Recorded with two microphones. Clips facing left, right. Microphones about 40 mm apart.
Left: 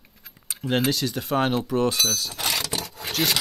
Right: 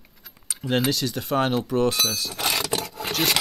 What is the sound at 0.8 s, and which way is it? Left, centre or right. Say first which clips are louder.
Speech: even; centre.